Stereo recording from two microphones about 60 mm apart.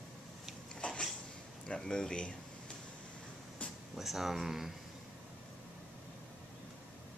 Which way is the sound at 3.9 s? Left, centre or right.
Centre.